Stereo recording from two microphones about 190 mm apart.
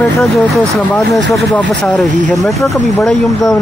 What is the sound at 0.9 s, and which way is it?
Speech, 5° left (ahead or behind).